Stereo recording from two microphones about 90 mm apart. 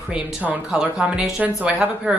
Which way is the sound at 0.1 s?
20° right (ahead or behind).